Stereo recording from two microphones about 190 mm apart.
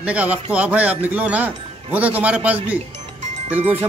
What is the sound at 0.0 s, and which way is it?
Speech, 5° right (ahead or behind).